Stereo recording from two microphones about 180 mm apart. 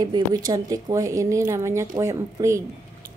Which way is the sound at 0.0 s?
20° right (ahead or behind).